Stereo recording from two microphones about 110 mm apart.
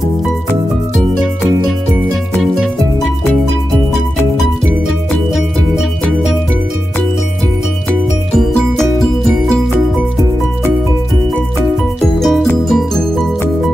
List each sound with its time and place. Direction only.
2.5 s music: 5° right (ahead or behind)
4.4 s music: centre (ahead or behind)
8.4 s music: 5° left (ahead or behind)
12.0 s music: centre (ahead or behind)